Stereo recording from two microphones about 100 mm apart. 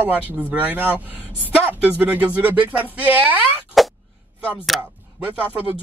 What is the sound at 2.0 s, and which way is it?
Speech, 15° right (ahead or behind).